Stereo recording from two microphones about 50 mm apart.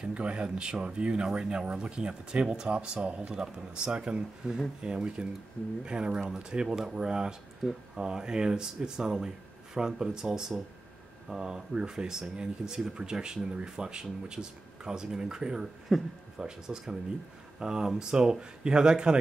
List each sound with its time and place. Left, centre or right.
0.0 s speech: centre
15.9 s speech: centre
16.3 s speech: centre